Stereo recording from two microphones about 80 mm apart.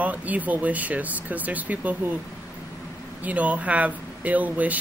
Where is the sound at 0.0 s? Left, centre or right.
Centre.